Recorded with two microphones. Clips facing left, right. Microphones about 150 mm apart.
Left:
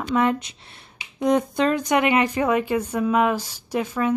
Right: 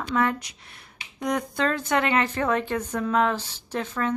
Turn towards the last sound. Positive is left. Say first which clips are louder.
# left 4 dB
turn(degrees=10)  # may be behind; listen again after turning